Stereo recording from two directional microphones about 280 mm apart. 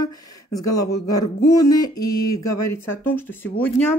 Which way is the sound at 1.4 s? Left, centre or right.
Centre.